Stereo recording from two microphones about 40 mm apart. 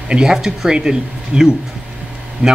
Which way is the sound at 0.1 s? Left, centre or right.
Centre.